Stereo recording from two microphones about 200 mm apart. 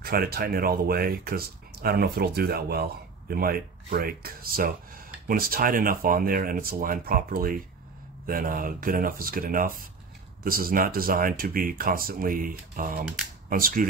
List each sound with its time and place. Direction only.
0.0 s speech: 50° right (ahead or behind)